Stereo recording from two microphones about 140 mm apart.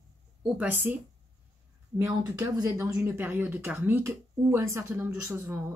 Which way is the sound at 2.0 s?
20° right (ahead or behind).